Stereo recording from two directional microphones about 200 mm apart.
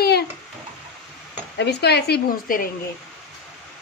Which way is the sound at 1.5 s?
55° left (ahead or behind).